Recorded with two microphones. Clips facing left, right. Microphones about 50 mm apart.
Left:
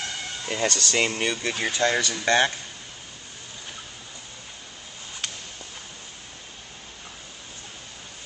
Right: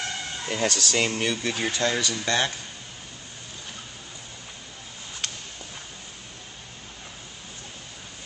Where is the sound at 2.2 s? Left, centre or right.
Centre.